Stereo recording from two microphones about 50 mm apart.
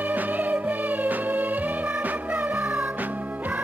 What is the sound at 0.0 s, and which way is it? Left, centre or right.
Music, right.